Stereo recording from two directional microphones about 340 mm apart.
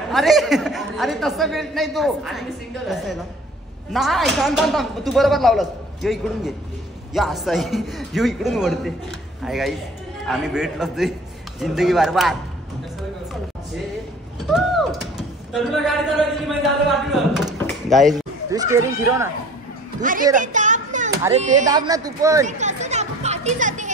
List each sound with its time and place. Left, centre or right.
0.1 s a woman's voice: centre
3.9 s a woman's voice: centre
14.4 s speech: centre
17.0 s a sound: centre
18.5 s speech: centre
20.0 s speech: right
20.3 s a sound: right
21.2 s speech: centre
22.5 s children playing: right